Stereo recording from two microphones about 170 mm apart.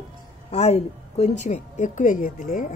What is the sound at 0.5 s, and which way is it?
A woman's voice, 40° left (ahead or behind).